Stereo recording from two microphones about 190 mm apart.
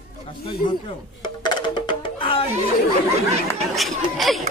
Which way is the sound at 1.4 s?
25° left (ahead or behind).